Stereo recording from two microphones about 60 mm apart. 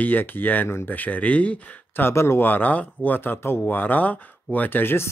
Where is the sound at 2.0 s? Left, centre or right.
Left.